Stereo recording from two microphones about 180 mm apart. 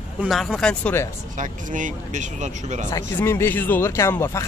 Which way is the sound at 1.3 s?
45° right (ahead or behind).